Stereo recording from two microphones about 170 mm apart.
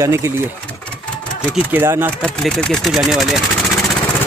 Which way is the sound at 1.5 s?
15° right (ahead or behind).